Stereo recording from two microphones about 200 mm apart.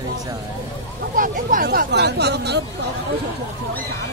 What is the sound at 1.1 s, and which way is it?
Speech, 45° right (ahead or behind).